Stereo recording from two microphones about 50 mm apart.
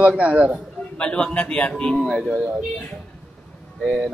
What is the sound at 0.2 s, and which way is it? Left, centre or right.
Speech, right.